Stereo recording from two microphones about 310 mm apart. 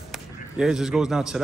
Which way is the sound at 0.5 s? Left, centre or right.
Centre.